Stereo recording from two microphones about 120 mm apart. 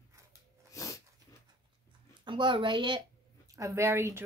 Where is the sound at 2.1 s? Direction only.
40° right (ahead or behind).